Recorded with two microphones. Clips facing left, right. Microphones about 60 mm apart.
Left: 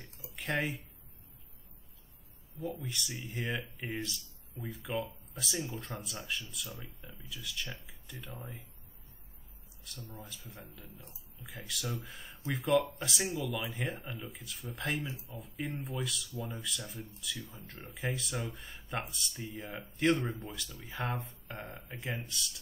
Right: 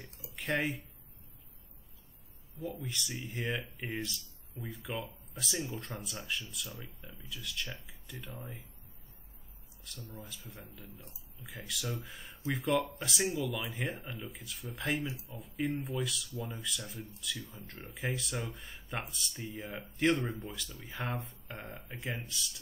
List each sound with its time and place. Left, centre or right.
0.4 s speech: centre
2.6 s speech: centre
10.0 s speech: centre
11.0 s speech: left
11.3 s speech: centre